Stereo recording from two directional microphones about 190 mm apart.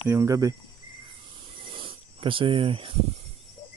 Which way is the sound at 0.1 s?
15° right (ahead or behind).